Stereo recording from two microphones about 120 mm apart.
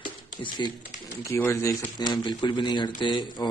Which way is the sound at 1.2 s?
25° left (ahead or behind).